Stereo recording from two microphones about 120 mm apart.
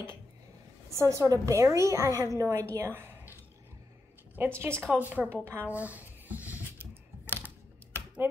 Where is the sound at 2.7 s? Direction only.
20° right (ahead or behind).